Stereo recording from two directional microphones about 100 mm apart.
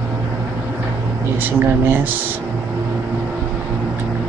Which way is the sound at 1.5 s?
20° right (ahead or behind).